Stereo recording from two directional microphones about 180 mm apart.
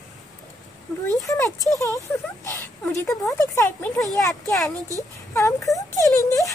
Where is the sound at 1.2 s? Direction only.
15° left (ahead or behind).